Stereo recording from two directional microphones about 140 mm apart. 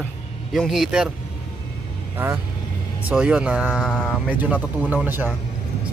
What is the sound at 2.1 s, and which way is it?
Speech, 15° right (ahead or behind).